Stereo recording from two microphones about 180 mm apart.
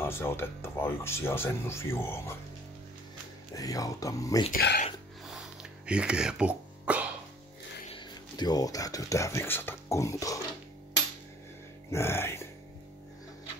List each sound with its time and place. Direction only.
0.0 s speech: 15° left (ahead or behind)
3.5 s speech: 20° left (ahead or behind)
4.5 s speech: 60° left (ahead or behind)
5.2 s music: centre (ahead or behind)
7.9 s speech: 25° left (ahead or behind)
11.9 s speech: 15° left (ahead or behind)